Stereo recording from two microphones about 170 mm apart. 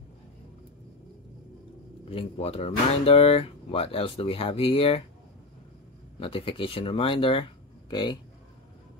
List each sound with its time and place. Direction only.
2.0 s speech: 35° left (ahead or behind)
6.1 s speech: 35° left (ahead or behind)